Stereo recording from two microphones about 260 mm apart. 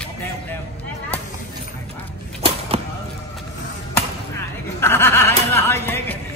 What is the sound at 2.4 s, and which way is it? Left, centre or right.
Arrow, right.